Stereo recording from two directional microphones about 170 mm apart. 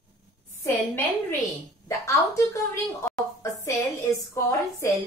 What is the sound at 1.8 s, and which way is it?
Speech, 15° left (ahead or behind).